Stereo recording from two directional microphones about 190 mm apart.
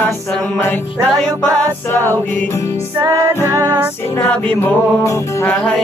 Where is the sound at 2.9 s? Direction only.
15° right (ahead or behind).